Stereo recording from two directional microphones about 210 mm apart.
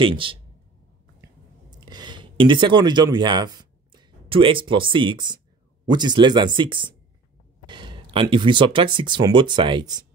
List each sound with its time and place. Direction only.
0.0 s speech: 25° right (ahead or behind)
1.2 s clicking: 20° right (ahead or behind)
5.9 s speech: 20° right (ahead or behind)